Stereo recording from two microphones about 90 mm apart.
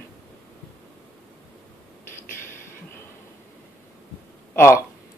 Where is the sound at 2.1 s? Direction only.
30° left (ahead or behind).